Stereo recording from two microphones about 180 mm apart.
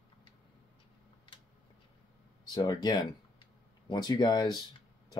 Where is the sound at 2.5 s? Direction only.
25° left (ahead or behind).